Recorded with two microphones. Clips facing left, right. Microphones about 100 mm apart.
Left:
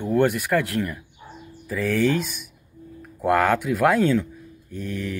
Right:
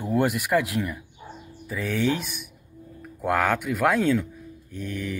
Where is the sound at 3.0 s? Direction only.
5° left (ahead or behind).